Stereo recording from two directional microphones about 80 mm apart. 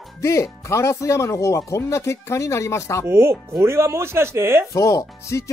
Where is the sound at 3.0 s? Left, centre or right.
Right.